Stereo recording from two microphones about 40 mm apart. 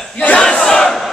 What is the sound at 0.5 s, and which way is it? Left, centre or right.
Battle cry, centre.